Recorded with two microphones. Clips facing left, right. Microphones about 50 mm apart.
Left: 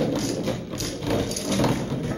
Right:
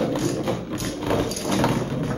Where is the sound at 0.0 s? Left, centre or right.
Centre.